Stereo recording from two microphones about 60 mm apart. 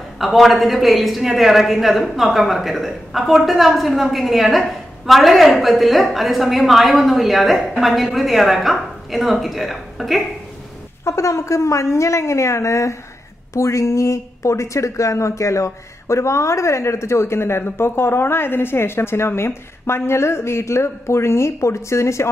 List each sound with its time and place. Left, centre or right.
0.2 s a woman's voice: centre
11.1 s a woman's voice: left